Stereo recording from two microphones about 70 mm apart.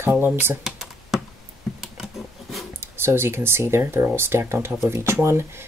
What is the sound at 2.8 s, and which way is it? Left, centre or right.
Speech, right.